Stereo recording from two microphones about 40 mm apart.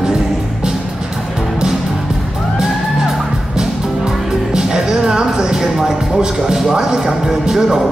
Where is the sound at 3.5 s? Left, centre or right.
Centre.